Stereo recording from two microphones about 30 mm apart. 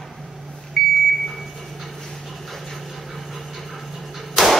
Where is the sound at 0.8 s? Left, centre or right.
Centre.